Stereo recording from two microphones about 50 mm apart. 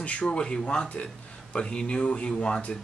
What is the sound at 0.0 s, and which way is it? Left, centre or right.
Speech, left.